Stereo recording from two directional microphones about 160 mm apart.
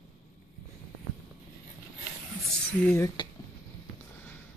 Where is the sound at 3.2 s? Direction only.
30° left (ahead or behind).